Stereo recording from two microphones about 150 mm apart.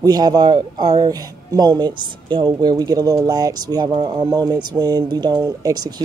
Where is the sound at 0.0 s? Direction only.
25° right (ahead or behind).